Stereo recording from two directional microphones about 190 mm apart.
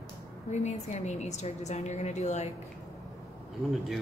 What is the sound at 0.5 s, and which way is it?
A woman's voice, 35° left (ahead or behind).